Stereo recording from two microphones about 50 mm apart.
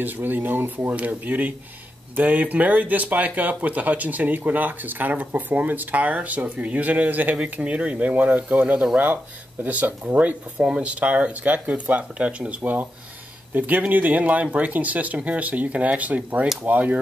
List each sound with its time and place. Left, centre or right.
0.0 s speech: right
13.5 s speech: right